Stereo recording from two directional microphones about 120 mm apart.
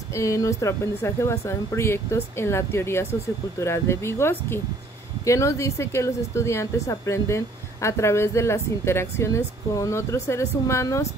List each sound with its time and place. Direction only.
0.1 s a woman's voice: 25° left (ahead or behind)